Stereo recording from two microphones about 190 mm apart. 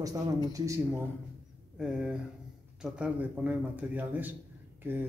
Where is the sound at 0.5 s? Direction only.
15° right (ahead or behind).